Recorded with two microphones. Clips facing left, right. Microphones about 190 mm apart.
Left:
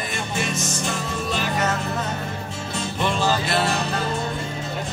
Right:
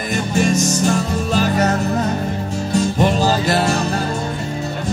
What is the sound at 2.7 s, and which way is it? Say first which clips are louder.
Music: right 8 dB; 40° right (ahead or behind).